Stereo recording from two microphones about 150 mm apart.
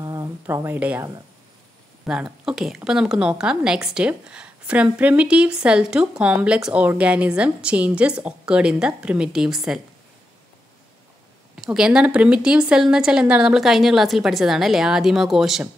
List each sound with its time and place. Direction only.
0.0 s a sound: 20° right (ahead or behind)
2.0 s a woman's voice: 5° right (ahead or behind)
11.5 s a woman's voice: 5° right (ahead or behind)